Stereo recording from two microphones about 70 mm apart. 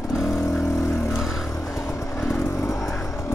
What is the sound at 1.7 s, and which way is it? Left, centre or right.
Vehicle, left.